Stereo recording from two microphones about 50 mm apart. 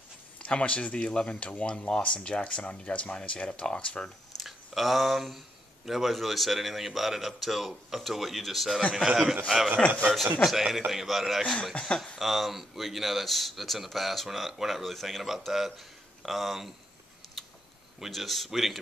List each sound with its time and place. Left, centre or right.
0.4 s speech: left
4.4 s a man's voice: centre
9.8 s speech: left
10.4 s speech: centre
17.4 s a sound: centre
18.0 s speech: centre